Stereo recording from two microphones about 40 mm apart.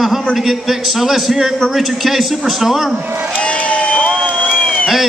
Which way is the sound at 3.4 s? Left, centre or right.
Left.